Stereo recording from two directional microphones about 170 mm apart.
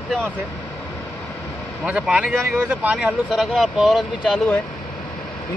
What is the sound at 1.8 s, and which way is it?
Speech, 5° right (ahead or behind).